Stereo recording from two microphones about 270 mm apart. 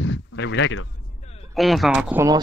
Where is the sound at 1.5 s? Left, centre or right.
Centre.